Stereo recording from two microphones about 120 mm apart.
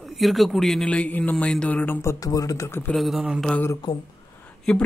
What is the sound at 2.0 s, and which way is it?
Speech, 30° left (ahead or behind).